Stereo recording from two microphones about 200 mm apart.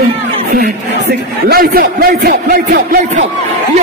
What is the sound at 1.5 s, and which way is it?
Speech, 50° right (ahead or behind).